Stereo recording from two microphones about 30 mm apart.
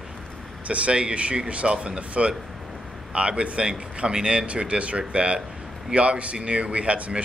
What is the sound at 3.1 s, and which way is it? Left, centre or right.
Speech, right.